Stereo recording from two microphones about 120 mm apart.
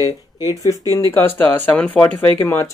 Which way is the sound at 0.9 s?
20° left (ahead or behind).